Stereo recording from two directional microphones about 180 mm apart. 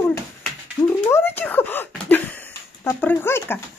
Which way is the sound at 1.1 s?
10° left (ahead or behind).